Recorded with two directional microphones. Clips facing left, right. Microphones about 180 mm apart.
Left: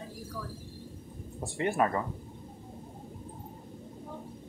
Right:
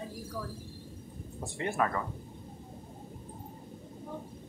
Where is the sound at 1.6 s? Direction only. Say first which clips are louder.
Left 3 dB; 20° left (ahead or behind).